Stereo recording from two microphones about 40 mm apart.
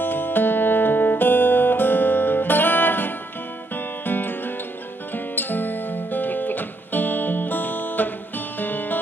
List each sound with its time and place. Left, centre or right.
0.0 s music: left